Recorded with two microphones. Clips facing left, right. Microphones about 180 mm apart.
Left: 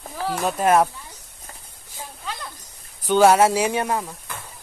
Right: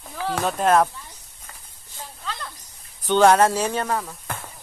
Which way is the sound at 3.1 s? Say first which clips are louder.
Left 1 dB; 5° left (ahead or behind).